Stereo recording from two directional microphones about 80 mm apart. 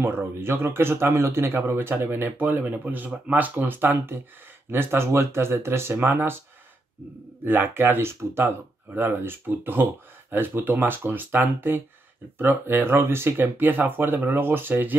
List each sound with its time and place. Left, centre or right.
0.0 s speech: right
7.4 s speech: right